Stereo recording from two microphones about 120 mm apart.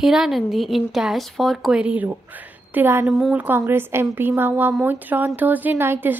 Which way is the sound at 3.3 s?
15° right (ahead or behind).